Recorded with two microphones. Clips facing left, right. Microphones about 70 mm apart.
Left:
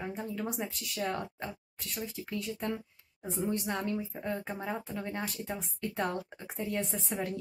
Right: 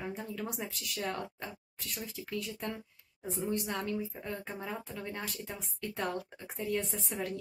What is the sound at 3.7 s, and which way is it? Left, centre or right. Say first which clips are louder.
Speech: left 2 dB; centre.